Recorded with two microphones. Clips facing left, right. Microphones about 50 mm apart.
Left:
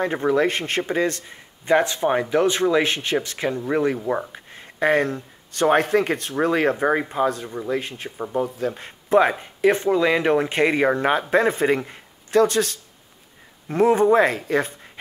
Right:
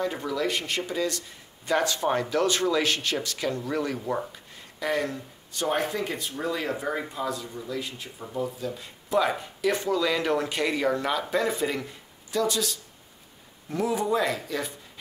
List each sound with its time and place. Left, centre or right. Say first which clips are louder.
0.0 s speech: left 8 dB; left
1.7 s speech: left 6 dB; left
4.3 s a sound: left 5 dB; left
5.5 s speech: left 9 dB; left